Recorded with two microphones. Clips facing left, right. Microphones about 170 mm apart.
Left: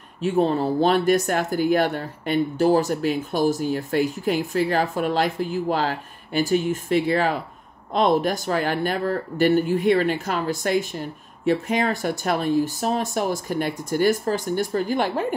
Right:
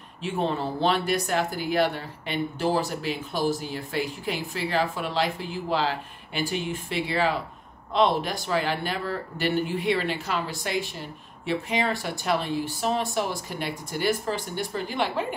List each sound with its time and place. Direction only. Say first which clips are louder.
0.2 s speech: left 7 dB; 40° left (ahead or behind)